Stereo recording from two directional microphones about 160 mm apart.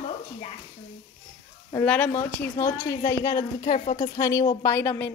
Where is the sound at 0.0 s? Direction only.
40° left (ahead or behind).